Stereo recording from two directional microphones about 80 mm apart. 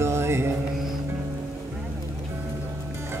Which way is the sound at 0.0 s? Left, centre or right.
Right.